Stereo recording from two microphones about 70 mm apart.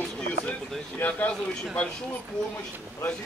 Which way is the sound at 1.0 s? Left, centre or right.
Left.